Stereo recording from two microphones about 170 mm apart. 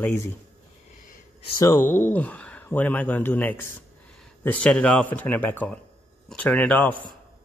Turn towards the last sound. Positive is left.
turn(degrees=10)  # may be behind; listen again after turning